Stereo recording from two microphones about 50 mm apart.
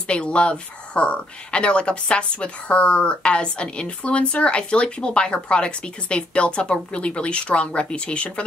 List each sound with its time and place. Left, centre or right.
0.0 s speech: left